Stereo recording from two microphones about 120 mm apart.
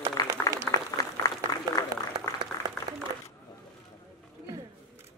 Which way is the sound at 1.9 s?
30° right (ahead or behind).